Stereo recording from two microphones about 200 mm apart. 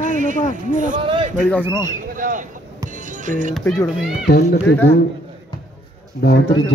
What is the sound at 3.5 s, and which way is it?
A child's voice, 5° left (ahead or behind).